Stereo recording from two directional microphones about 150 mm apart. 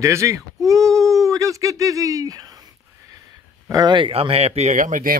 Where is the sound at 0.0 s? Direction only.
20° right (ahead or behind).